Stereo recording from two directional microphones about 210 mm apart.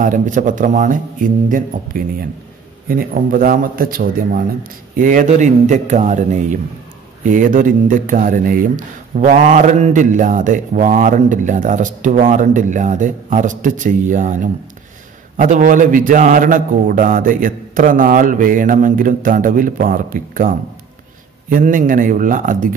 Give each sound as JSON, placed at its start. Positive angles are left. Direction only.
{"t": 0.0, "sound": "speech", "side_deg": -40}